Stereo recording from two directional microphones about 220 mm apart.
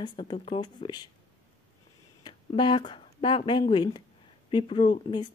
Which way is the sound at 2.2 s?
20° left (ahead or behind).